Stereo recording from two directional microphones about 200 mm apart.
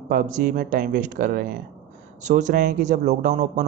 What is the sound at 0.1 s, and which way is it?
A man's voice, 40° right (ahead or behind).